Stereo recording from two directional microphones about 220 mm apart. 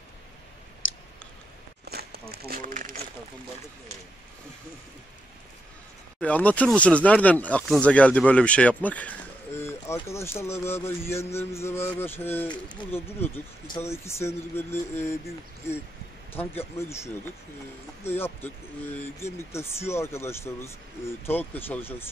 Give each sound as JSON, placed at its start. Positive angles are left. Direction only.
{"t": 0.8, "sound": "clicking", "side_deg": 60}
{"t": 1.9, "sound": "a sound", "side_deg": -45}
{"t": 6.2, "sound": "speech", "side_deg": 5}
{"t": 16.3, "sound": "speech", "side_deg": 10}